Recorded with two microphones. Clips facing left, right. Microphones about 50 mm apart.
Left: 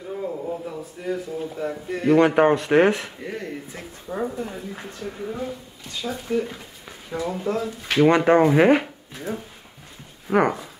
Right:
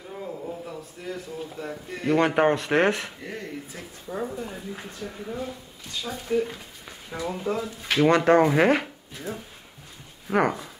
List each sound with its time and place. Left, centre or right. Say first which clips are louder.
0.7 s a man's voice: left 6 dB; centre
3.7 s speech: left 3 dB; left
4.7 s a man's voice: left 3 dB; centre
8.1 s a man's voice: left 1 dB; centre
10.2 s speech: left 3 dB; centre